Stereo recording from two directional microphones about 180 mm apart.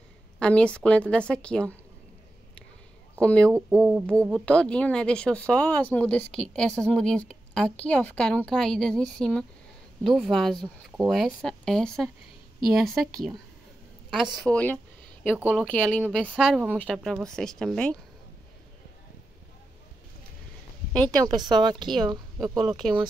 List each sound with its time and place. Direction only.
0.4 s a woman's voice: 5° left (ahead or behind)
3.2 s a woman's voice: 5° left (ahead or behind)
3.5 s a sound: 15° right (ahead or behind)
4.3 s a woman's voice: 5° left (ahead or behind)
15.3 s a sound: 10° right (ahead or behind)
15.6 s a woman's voice: 5° left (ahead or behind)
16.3 s a sound: 5° right (ahead or behind)
16.7 s a woman's voice: 5° left (ahead or behind)
21.1 s speech: 20° right (ahead or behind)
22.7 s a woman's voice: centre (ahead or behind)